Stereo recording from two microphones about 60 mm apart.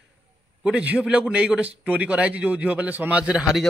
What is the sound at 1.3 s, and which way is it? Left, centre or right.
A man's voice, centre.